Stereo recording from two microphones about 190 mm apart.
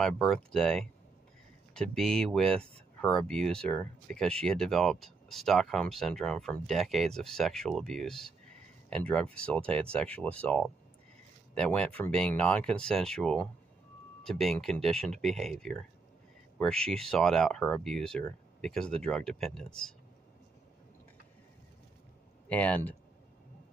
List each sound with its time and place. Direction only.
0.0 s speech: centre (ahead or behind)
22.5 s speech: 10° left (ahead or behind)